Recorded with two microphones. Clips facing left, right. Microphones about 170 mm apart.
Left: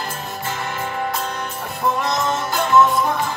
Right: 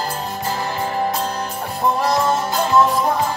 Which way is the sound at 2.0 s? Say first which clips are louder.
Right 4 dB; 35° right (ahead or behind).